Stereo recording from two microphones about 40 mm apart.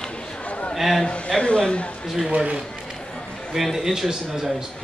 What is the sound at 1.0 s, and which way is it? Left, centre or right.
Speech, left.